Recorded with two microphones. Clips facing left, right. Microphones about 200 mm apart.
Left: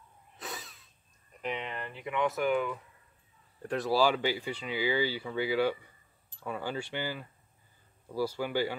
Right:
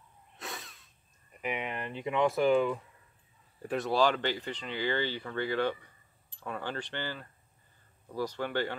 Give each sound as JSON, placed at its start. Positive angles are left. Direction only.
{"t": 0.4, "sound": "sneeze", "side_deg": 0}
{"t": 1.4, "sound": "speech", "side_deg": -10}
{"t": 3.6, "sound": "speech", "side_deg": 0}